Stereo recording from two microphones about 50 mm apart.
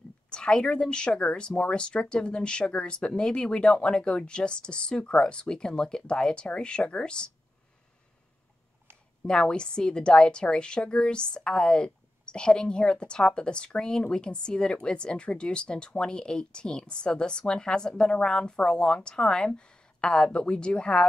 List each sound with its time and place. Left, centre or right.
0.3 s a woman's voice: centre
9.2 s a woman's voice: centre